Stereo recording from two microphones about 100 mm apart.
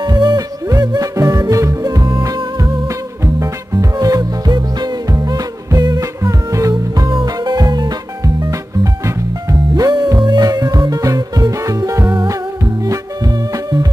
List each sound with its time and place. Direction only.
0.0 s music: 45° right (ahead or behind)
9.0 s music: 35° right (ahead or behind)